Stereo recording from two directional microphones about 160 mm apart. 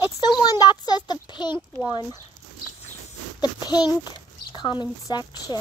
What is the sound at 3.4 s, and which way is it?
A child's voice, 25° left (ahead or behind).